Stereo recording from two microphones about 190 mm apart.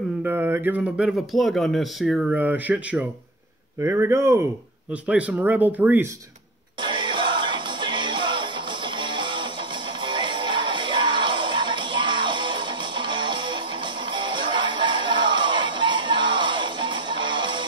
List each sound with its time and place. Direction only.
0.2 s speech: 10° right (ahead or behind)
6.8 s music: 25° right (ahead or behind)